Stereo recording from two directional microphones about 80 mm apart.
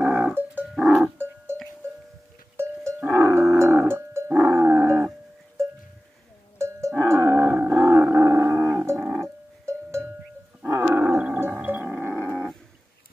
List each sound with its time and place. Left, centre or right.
0.0 s dog: right
1.1 s a sound: right
2.5 s livestock: right
3.1 s wild animals: right
4.4 s dog: right
6.6 s livestock: right
7.7 s a sound: right
10.7 s roar: right
11.3 s gargling: right